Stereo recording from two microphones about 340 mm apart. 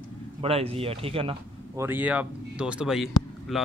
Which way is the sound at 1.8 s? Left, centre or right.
Centre.